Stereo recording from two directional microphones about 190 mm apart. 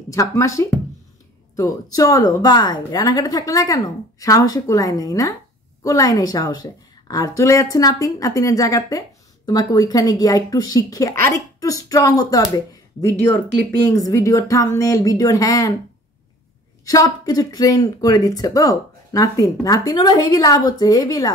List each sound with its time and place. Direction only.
0.1 s speech: 15° left (ahead or behind)
16.8 s speech: 20° left (ahead or behind)